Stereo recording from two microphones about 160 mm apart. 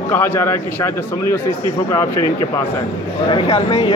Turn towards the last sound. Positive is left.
turn(degrees=40)  # may be behind; listen again after turning